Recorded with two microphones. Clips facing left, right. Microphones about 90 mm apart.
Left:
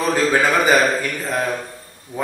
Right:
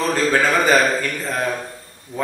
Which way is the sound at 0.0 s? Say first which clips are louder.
Left 1 dB; 15° left (ahead or behind).